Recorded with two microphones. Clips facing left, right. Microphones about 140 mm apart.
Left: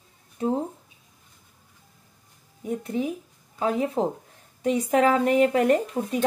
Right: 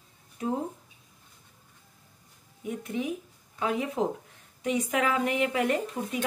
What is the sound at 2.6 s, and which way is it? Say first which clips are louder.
A woman's voice: left 5 dB; 35° left (ahead or behind).